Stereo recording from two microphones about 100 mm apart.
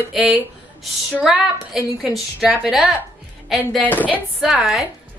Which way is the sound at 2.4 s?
15° right (ahead or behind).